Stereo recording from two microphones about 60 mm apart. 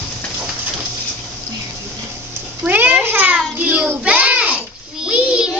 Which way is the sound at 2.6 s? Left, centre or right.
Right.